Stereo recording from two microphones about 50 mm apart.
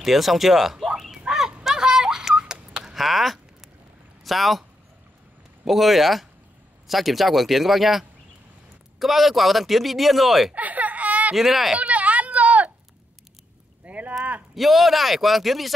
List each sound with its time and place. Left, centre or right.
0.0 s speech: centre
1.2 s a sound: centre
4.2 s speech: centre
5.7 s speech: centre
10.5 s baby cry: right
11.3 s speech: centre
11.9 s a sound: right
13.8 s rowboat: right
14.5 s speech: centre